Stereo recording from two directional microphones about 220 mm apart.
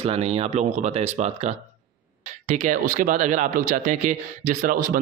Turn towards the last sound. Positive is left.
turn(degrees=-40)  # may be behind; listen again after turning